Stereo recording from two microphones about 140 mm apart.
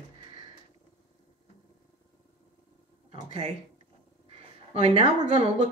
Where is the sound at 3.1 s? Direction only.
40° right (ahead or behind).